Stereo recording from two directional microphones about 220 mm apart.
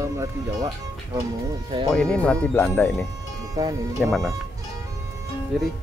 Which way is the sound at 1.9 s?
5° left (ahead or behind).